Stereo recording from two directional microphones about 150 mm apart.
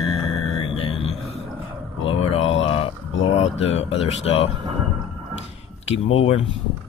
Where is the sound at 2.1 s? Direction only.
40° left (ahead or behind).